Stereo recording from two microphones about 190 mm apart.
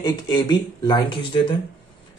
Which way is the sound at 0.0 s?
20° left (ahead or behind).